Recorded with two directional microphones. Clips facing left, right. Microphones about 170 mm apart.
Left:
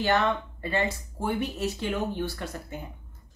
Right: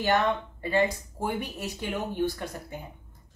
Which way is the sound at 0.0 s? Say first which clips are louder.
Even; 15° right (ahead or behind).